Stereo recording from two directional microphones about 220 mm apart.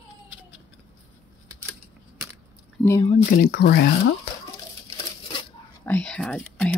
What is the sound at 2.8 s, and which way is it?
Speech, 15° left (ahead or behind).